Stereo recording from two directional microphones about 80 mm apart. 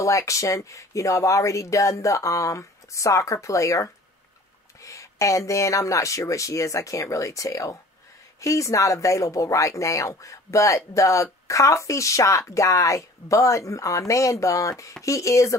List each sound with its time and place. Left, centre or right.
0.0 s speech: left